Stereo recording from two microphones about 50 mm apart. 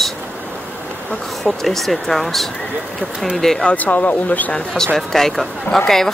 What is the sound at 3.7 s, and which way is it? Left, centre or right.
Speech, left.